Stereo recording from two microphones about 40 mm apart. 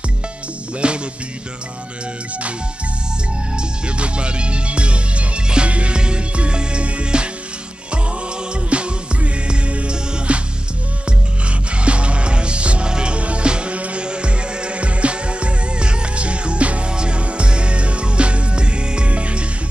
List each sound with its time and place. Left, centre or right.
0.7 s music: right
3.5 s music: right
8.5 s music: right